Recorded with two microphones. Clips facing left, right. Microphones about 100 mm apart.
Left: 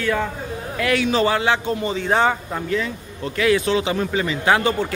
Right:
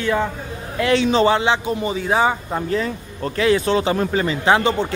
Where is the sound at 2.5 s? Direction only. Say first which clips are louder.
Right 2 dB; 35° right (ahead or behind).